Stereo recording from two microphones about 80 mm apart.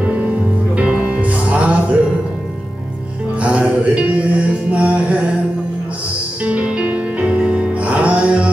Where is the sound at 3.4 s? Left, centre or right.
Centre.